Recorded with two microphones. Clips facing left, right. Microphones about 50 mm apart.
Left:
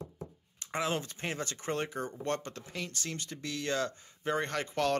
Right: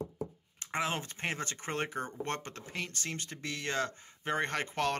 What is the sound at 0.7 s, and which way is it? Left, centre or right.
Speech, right.